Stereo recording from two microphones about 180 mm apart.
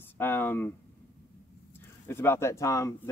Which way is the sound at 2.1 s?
15° left (ahead or behind).